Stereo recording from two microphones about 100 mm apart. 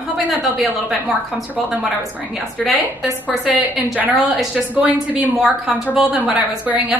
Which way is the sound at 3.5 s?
15° right (ahead or behind).